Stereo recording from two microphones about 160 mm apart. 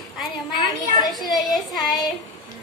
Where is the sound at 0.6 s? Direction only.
25° left (ahead or behind).